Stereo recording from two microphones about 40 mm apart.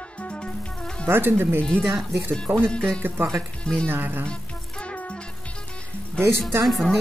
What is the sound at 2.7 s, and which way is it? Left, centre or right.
Speech, left.